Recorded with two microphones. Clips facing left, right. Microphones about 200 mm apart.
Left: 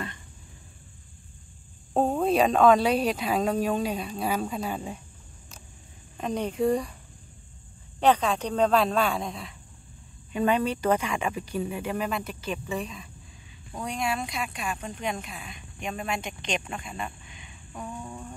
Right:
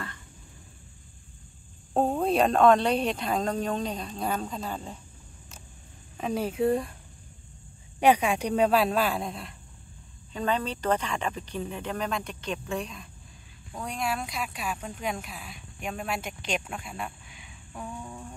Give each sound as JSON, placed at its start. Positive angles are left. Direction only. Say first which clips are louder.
{"t": 2.0, "sound": "speech", "louder": "left 1 dB", "side_deg": 0}
{"t": 6.1, "sound": "speech", "louder": "even", "side_deg": -5}
{"t": 8.0, "sound": "speech", "louder": "even", "side_deg": -10}
{"t": 10.3, "sound": "speech", "louder": "left 4 dB", "side_deg": 10}
{"t": 18.0, "sound": "music", "louder": "left 2 dB", "side_deg": 0}